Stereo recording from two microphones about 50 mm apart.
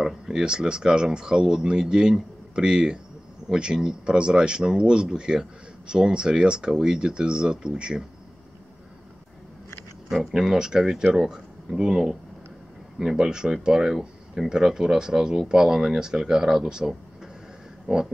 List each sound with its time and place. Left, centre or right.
0.0 s a man's voice: centre
10.0 s a man's voice: centre
13.9 s a sound: centre
14.5 s a man's voice: centre